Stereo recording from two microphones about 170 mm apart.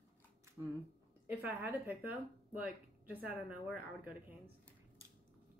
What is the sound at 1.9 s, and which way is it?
A woman's voice, 10° right (ahead or behind).